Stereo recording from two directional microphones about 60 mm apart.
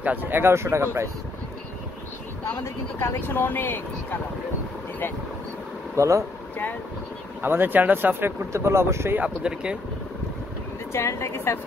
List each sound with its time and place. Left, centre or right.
0.0 s speech: right
2.4 s speech: left
5.9 s speech: right
7.4 s speech: right
8.5 s speech: right
9.2 s speech: centre
10.9 s a woman's voice: left